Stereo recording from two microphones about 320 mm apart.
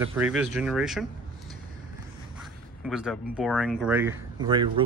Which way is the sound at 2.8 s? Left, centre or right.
Centre.